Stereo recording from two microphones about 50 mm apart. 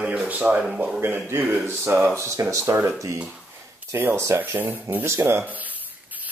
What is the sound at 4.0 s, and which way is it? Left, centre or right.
Speech, right.